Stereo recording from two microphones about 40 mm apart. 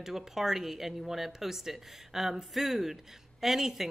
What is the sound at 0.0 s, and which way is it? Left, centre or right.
Speech, centre.